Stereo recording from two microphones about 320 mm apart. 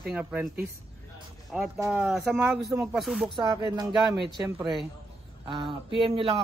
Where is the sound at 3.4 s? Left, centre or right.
Centre.